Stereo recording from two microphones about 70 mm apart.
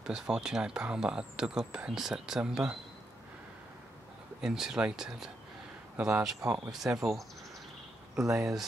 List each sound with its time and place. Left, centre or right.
0.0 s speech: centre
4.4 s speech: centre
5.9 s speech: centre
6.7 s speech: centre
8.2 s speech: centre